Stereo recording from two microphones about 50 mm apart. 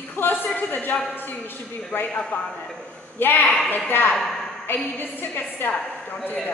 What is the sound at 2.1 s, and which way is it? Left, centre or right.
Speech, left.